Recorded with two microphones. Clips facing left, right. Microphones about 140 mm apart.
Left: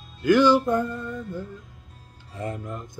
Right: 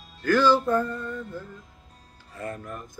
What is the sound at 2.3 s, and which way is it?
Speech, 20° left (ahead or behind).